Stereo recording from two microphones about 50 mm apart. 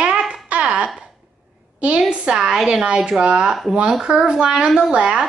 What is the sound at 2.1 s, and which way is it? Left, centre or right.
Speech, centre.